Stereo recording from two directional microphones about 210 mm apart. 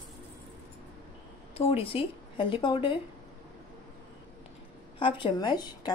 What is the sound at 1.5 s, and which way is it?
A woman's voice, 25° left (ahead or behind).